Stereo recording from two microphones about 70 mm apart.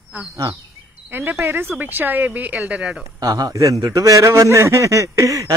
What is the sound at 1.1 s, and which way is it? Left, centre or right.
Speech, right.